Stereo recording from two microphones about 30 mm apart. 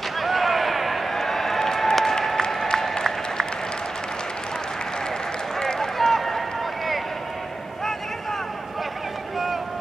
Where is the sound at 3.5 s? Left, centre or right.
Left.